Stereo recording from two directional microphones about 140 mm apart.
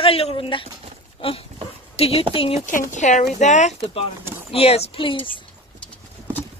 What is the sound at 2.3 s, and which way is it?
Speech, 40° left (ahead or behind).